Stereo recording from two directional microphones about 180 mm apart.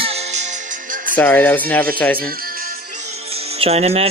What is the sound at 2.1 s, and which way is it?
Music, 55° right (ahead or behind).